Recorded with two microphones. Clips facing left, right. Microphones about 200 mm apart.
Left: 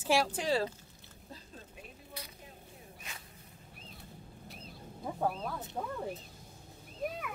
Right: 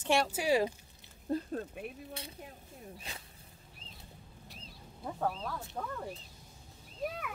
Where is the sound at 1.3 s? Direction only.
65° right (ahead or behind).